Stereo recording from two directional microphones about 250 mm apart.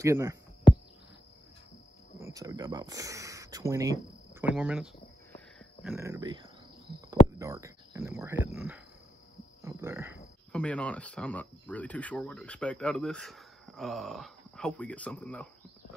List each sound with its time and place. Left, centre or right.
0.0 s speech: centre
2.3 s speech: centre
5.3 s a sound: centre
5.9 s speech: centre
9.6 s cricket: centre
10.5 s speech: centre